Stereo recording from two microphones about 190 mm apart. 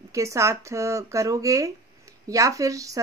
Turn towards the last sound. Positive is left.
turn(degrees=-15)  # may be behind; listen again after turning